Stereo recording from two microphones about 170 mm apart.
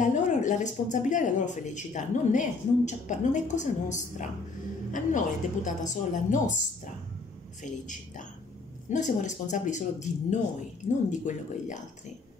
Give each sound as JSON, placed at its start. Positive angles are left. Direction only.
{"t": 0.0, "sound": "speech", "side_deg": 45}
{"t": 7.6, "sound": "speech", "side_deg": 50}